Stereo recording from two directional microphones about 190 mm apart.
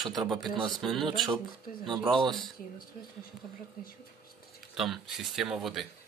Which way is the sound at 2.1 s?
25° right (ahead or behind).